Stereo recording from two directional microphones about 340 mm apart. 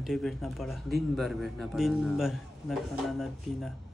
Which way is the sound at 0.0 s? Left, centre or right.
Centre.